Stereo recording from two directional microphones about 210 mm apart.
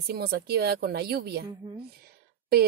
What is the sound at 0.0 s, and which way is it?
Speech, 50° right (ahead or behind).